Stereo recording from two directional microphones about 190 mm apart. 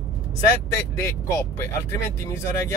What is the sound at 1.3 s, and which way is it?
Speech, 15° left (ahead or behind).